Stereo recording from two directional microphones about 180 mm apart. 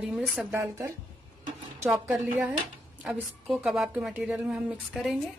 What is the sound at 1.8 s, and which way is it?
A woman's voice, centre (ahead or behind).